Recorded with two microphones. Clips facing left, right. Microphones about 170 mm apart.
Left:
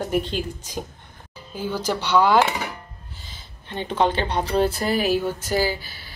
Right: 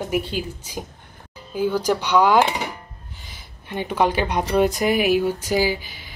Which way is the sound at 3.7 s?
10° right (ahead or behind).